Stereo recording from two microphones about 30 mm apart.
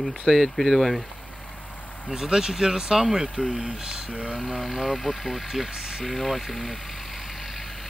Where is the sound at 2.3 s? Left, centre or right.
Right.